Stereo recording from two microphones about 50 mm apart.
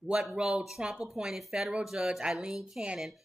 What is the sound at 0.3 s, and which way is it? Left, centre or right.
Speech, centre.